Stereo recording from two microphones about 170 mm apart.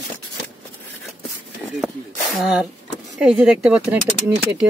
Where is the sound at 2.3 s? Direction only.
5° right (ahead or behind).